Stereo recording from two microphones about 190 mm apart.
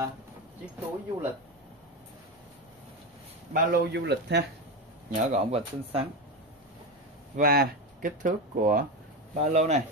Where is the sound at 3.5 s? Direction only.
55° right (ahead or behind).